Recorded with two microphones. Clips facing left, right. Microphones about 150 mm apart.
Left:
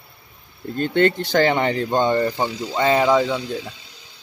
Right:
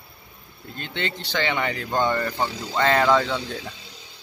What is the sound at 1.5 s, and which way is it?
Speech, 30° left (ahead or behind).